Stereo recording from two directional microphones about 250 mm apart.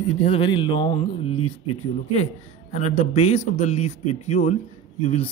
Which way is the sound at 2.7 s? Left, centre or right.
Left.